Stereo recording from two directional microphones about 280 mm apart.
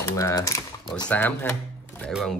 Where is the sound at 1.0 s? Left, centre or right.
Centre.